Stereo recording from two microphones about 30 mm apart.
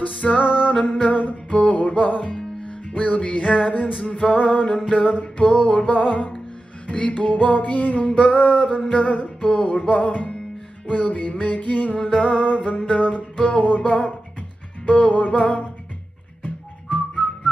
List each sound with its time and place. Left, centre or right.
0.0 s music: left
3.1 s music: left
13.4 s music: left